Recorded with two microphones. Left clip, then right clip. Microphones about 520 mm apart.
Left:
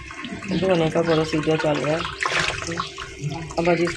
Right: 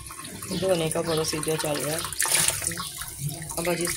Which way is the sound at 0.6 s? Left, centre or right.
Right.